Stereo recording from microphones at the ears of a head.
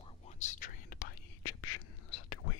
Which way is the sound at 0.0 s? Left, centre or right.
Left.